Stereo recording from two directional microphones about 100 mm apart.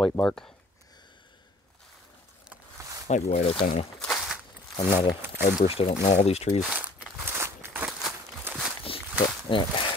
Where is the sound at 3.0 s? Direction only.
90° left; by 3.9 s 70° left (ahead or behind).